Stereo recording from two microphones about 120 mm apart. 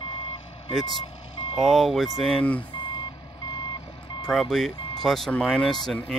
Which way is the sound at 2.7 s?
45° left (ahead or behind).